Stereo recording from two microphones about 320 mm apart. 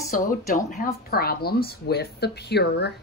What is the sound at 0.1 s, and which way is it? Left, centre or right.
A woman's voice, left.